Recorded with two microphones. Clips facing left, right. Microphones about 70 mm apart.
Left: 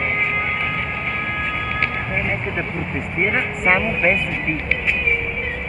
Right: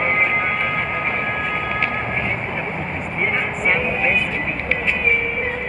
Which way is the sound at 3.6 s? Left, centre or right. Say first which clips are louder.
Left 2 dB; left.